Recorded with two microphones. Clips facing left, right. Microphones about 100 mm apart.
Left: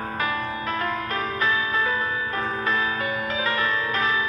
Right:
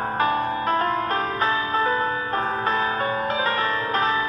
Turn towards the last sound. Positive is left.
turn(degrees=-40)  # may be behind; listen again after turning